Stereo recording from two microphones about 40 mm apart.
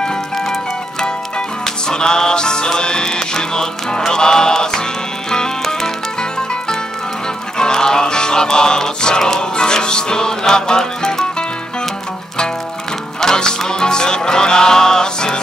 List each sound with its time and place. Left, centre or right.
1.9 s music: centre
7.5 s music: centre
13.2 s music: centre